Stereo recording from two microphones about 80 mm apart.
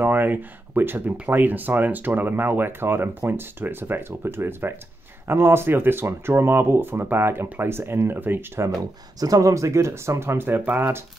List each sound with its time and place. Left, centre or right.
0.0 s speech: right
9.2 s speech: right